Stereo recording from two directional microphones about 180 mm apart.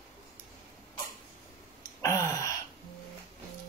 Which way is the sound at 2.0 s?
15° left (ahead or behind).